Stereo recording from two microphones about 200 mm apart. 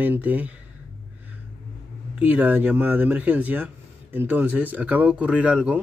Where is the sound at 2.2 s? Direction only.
10° right (ahead or behind).